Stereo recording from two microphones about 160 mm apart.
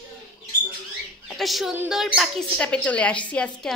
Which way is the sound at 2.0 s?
Centre (ahead or behind).